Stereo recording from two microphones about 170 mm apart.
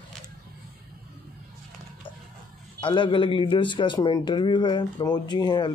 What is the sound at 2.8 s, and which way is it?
A man's voice, 30° left (ahead or behind).